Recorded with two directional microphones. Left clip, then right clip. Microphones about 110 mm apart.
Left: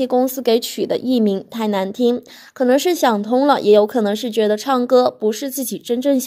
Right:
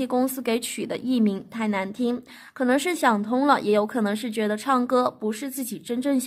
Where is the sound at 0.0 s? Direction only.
15° left (ahead or behind); by 1.9 s 30° left (ahead or behind).